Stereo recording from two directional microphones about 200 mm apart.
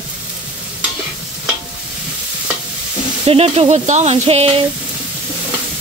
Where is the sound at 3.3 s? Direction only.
30° right (ahead or behind).